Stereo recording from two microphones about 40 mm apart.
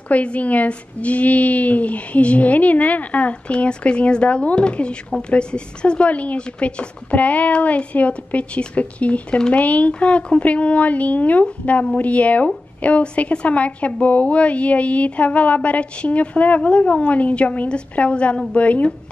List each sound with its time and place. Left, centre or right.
0.1 s a woman's voice: left